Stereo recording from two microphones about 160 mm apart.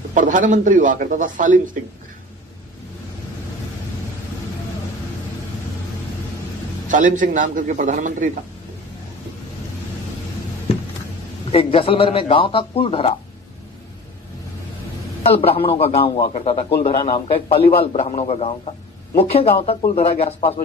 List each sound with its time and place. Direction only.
0.1 s a man's voice: 55° right (ahead or behind)
6.9 s a man's voice: 55° right (ahead or behind)
11.5 s a man's voice: 35° left (ahead or behind)
15.2 s a man's voice: 40° left (ahead or behind)